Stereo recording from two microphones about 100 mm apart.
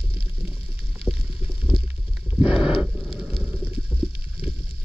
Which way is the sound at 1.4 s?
15° right (ahead or behind).